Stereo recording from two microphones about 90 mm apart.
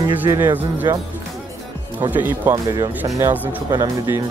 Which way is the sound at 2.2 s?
25° right (ahead or behind).